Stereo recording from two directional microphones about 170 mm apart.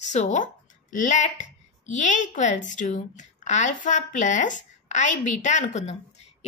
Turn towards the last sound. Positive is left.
turn(degrees=45)  # may be behind; listen again after turning